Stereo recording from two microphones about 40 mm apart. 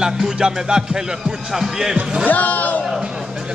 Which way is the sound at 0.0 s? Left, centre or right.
Centre.